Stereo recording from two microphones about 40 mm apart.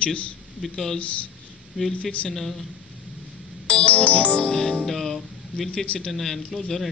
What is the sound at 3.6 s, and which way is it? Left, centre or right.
Music, left.